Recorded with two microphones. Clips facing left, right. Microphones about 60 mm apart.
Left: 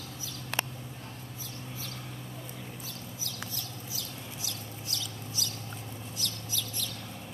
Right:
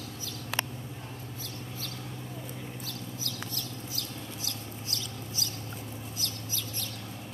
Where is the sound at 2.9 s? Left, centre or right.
Right.